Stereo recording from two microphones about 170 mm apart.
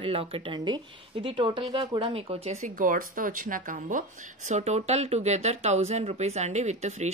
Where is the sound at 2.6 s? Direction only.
55° right (ahead or behind).